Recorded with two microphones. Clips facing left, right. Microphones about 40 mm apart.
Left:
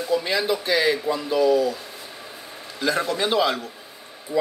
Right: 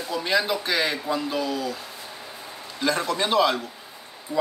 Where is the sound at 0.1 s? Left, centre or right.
Centre.